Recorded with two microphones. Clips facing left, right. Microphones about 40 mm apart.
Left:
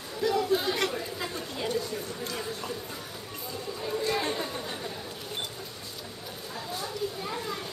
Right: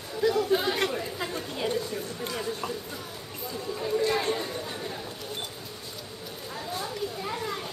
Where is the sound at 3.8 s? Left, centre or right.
Centre.